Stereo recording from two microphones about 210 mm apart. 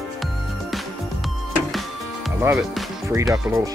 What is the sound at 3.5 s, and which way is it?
Speech, 10° right (ahead or behind).